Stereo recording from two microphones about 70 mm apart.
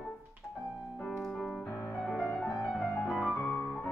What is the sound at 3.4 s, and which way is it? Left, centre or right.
Music, left.